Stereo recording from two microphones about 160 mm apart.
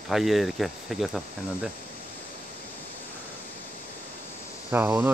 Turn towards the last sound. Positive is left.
turn(degrees=-15)  # may be behind; listen again after turning